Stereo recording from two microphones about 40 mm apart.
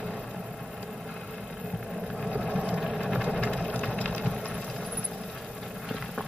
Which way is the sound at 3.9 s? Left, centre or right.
Left.